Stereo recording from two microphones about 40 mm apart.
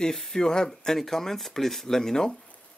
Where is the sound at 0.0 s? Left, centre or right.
Centre.